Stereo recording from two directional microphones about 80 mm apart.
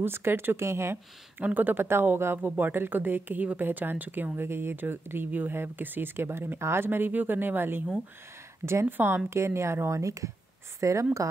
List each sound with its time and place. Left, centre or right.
0.0 s speech: right
1.4 s speech: right